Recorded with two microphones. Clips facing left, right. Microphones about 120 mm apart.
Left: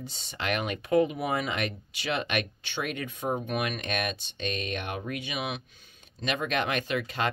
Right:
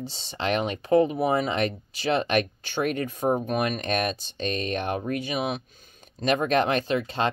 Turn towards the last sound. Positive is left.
turn(degrees=-30)  # may be behind; listen again after turning